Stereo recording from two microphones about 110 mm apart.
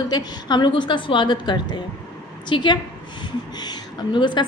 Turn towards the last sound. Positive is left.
turn(degrees=45)  # may be behind; listen again after turning